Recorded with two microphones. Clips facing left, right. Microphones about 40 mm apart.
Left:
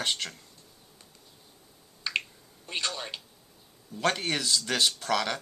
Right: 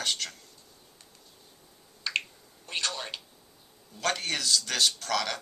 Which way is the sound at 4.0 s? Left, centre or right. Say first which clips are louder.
Left 2 dB; centre.